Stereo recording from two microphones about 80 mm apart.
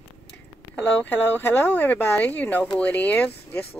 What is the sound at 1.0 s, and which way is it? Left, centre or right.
Speech, left.